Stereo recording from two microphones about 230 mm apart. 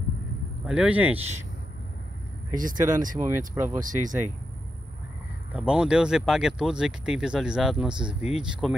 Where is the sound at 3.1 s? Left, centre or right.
Centre.